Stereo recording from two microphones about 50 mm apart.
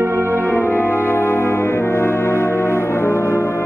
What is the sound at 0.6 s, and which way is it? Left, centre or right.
Brass instrument, left.